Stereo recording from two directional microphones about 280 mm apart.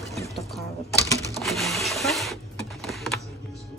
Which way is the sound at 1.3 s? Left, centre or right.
Centre.